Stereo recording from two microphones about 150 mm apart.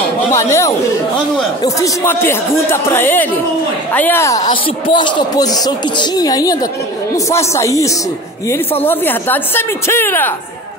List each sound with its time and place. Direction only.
0.3 s speech: 20° left (ahead or behind)